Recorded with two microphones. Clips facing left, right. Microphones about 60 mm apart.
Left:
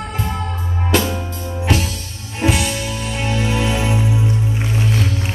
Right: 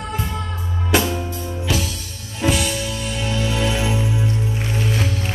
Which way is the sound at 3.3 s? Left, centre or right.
Centre.